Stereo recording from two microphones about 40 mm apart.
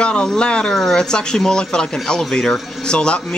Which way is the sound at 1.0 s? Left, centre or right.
Centre.